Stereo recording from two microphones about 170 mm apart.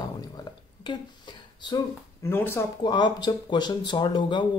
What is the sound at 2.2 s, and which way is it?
Speech, 15° left (ahead or behind).